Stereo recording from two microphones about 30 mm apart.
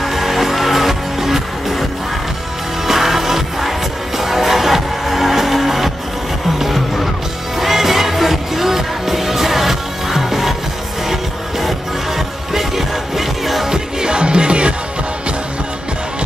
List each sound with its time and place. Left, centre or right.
0.0 s music: centre
2.9 s music: centre
7.5 s music: centre
12.5 s music: centre
13.7 s music: right